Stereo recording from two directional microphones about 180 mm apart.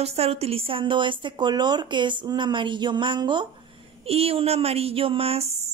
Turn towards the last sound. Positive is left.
turn(degrees=-35)  # may be behind; listen again after turning